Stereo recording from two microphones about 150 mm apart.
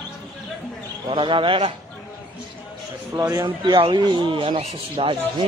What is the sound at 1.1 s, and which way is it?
Speech, 35° right (ahead or behind).